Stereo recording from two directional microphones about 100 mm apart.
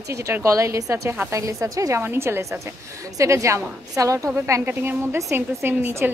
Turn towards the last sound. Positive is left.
turn(degrees=-20)  # may be behind; listen again after turning